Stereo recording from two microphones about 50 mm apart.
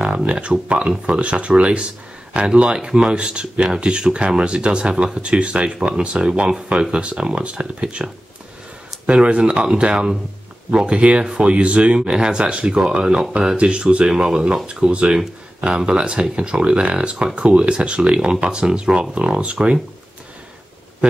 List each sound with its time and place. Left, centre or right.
0.3 s speech: right
21.0 s speech: centre